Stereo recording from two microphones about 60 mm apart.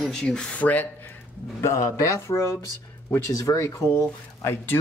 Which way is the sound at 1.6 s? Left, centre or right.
Left.